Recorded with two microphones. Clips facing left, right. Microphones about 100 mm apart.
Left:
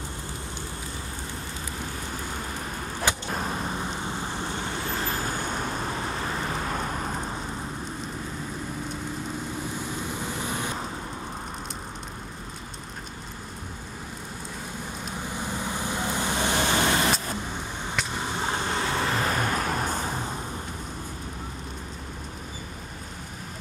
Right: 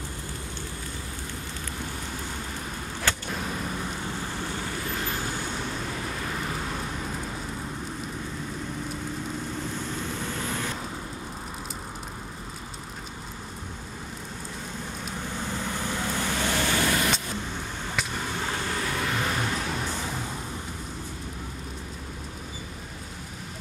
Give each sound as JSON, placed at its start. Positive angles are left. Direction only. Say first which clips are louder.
{"t": 3.3, "sound": "vehicle", "louder": "left 2 dB", "side_deg": 40}
{"t": 6.6, "sound": "vehicle", "louder": "left 3 dB", "side_deg": 50}
{"t": 9.8, "sound": "vehicle", "louder": "even", "side_deg": 15}
{"t": 15.3, "sound": "vehicle", "louder": "left 1 dB", "side_deg": 15}
{"t": 18.2, "sound": "vehicle", "louder": "left 2 dB", "side_deg": 25}